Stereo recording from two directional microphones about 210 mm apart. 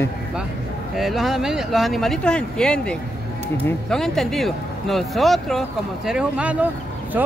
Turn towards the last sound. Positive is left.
turn(degrees=-5)  # may be behind; listen again after turning